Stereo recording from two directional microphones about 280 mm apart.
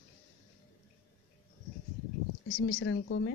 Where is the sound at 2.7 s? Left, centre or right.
Left.